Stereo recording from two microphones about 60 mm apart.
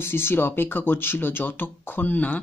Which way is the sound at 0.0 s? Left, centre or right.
Left.